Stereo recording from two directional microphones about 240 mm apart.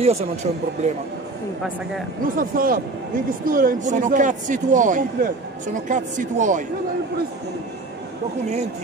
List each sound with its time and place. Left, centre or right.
0.0 s speech: right
2.3 s speech: right